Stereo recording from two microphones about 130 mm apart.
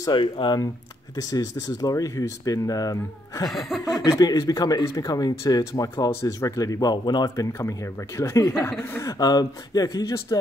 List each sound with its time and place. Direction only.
0.0 s speech: 35° left (ahead or behind)
3.4 s chuckle: centre (ahead or behind)
3.8 s speech: 25° left (ahead or behind)
9.2 s speech: 30° left (ahead or behind)